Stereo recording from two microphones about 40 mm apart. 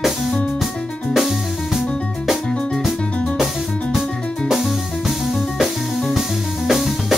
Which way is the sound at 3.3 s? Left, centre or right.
Centre.